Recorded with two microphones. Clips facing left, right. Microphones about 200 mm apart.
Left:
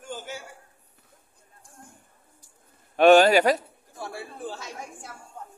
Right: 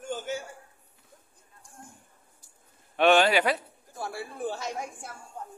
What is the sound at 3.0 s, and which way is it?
Speech, 40° left (ahead or behind).